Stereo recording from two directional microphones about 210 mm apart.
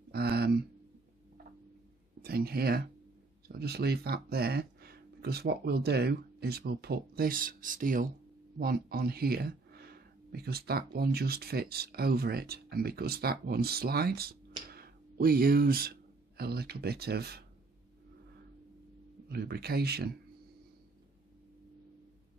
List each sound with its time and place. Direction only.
0.1 s a sound: 50° right (ahead or behind)
2.2 s speech: 45° right (ahead or behind)
19.2 s speech: 50° right (ahead or behind)